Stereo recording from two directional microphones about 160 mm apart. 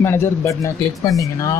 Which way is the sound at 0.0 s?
15° left (ahead or behind).